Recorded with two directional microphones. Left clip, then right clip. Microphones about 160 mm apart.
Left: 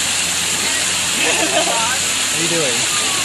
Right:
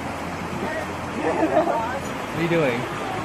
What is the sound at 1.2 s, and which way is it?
Waterfall, 25° left (ahead or behind).